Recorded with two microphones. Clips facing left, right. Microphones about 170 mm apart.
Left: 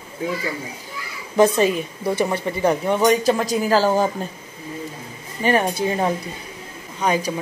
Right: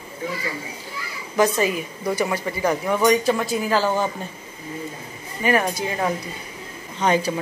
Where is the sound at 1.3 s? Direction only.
25° left (ahead or behind).